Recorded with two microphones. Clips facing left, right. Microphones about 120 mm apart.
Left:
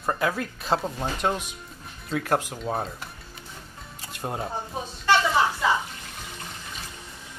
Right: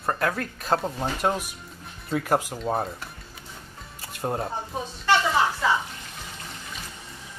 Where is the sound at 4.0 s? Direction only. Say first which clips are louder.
Right 3 dB; centre (ahead or behind).